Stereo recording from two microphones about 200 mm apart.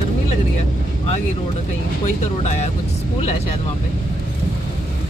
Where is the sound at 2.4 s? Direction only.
35° left (ahead or behind).